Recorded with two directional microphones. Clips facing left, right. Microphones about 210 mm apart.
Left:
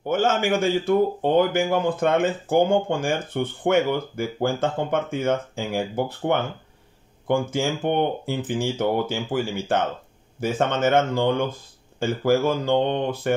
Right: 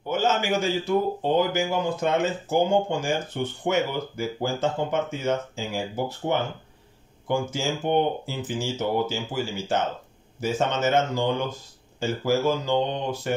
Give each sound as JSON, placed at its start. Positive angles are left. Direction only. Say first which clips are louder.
{"t": 0.1, "sound": "a man's voice", "louder": "left 3 dB", "side_deg": 50}